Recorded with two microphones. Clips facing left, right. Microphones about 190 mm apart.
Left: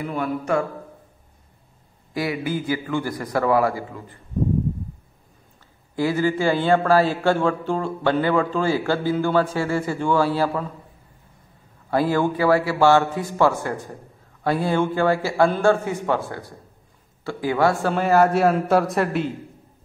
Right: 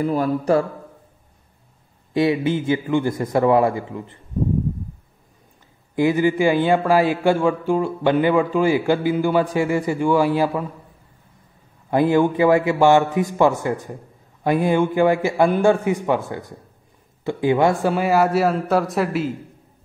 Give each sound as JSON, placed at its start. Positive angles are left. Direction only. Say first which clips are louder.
{"t": 0.0, "sound": "speech", "louder": "right 6 dB", "side_deg": -35}
{"t": 2.1, "sound": "a man's voice", "louder": "right 6 dB", "side_deg": -25}
{"t": 5.9, "sound": "speech", "louder": "right 4 dB", "side_deg": -20}
{"t": 11.9, "sound": "a man's voice", "louder": "right 4 dB", "side_deg": -20}
{"t": 17.9, "sound": "a man's voice", "louder": "even", "side_deg": -10}